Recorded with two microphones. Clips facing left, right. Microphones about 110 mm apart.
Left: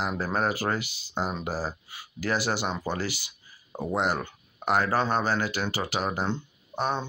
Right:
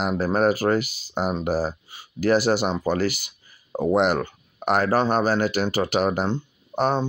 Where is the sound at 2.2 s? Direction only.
50° right (ahead or behind).